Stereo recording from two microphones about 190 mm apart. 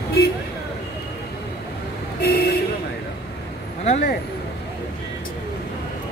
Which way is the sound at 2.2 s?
60° left (ahead or behind).